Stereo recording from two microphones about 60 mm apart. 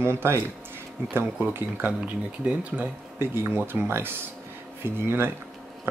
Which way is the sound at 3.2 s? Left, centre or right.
Right.